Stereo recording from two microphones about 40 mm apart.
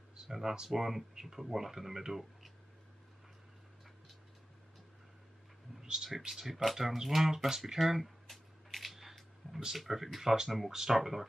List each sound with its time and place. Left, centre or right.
0.1 s speech: centre
5.8 s a sound: centre
6.2 s speech: centre
8.9 s music: centre
9.8 s speech: centre